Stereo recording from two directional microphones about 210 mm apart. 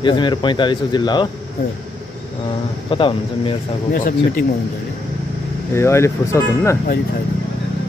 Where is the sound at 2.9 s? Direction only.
25° left (ahead or behind).